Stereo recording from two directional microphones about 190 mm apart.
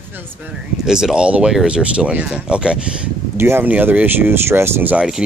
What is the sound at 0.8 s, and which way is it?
Speech, 5° right (ahead or behind).